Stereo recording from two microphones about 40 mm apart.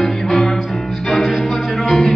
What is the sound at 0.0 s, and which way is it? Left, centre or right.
Music, centre.